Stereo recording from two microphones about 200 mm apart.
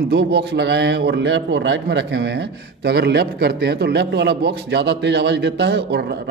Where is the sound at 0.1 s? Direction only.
55° right (ahead or behind).